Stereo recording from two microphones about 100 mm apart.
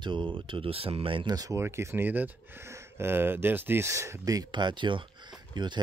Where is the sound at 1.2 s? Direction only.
35° right (ahead or behind).